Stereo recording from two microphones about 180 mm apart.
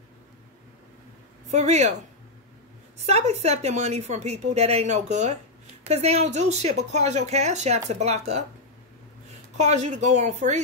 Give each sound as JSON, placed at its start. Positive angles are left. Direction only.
{"t": 1.5, "sound": "a woman's voice", "side_deg": -40}
{"t": 3.0, "sound": "a woman's voice", "side_deg": -35}
{"t": 9.6, "sound": "a woman's voice", "side_deg": -40}